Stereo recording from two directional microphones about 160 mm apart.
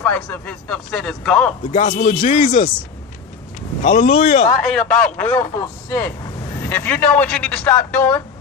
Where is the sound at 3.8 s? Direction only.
50° left (ahead or behind).